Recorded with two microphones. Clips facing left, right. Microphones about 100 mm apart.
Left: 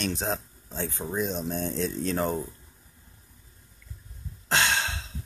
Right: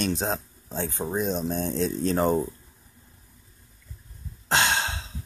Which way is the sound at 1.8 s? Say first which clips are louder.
Right 5 dB; 30° right (ahead or behind).